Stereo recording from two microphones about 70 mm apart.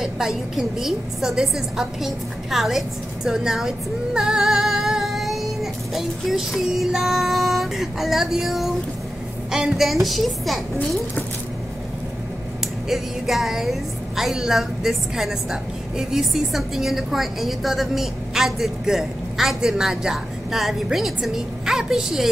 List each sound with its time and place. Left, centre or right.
0.0 s a woman's voice: centre
3.3 s female singing: centre
9.5 s a woman's voice: centre
12.8 s a woman's voice: centre